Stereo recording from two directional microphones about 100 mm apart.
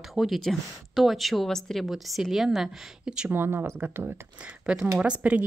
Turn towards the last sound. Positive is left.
turn(degrees=-15)  # may be behind; listen again after turning